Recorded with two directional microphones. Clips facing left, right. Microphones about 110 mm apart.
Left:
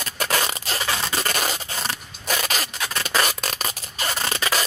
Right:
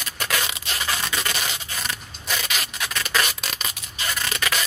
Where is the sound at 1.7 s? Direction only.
35° left (ahead or behind).